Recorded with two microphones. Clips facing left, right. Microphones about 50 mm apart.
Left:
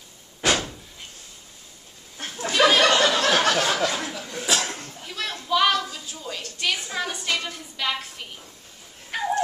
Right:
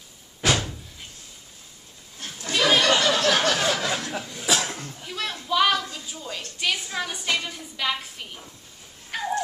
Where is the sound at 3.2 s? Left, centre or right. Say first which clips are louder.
Left 1 dB; centre.